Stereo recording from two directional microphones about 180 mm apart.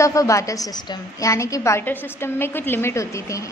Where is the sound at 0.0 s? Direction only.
15° left (ahead or behind).